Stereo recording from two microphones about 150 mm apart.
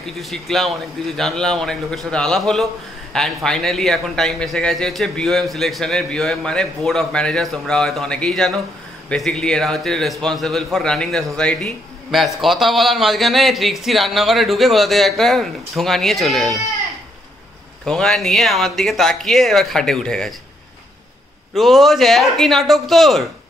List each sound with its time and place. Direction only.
0.0 s a man's voice: centre (ahead or behind)
17.8 s a man's voice: 5° left (ahead or behind)
21.5 s a man's voice: centre (ahead or behind)